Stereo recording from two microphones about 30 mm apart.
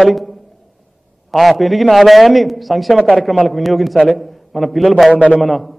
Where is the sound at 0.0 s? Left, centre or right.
Centre.